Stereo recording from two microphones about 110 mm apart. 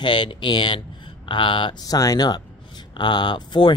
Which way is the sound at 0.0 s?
45° left (ahead or behind).